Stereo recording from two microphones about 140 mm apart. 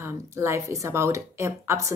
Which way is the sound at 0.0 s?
20° right (ahead or behind).